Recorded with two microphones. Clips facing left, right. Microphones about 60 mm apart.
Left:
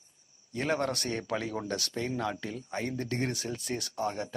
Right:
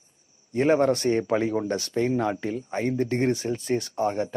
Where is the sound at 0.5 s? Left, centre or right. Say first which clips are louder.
Right 10 dB; right.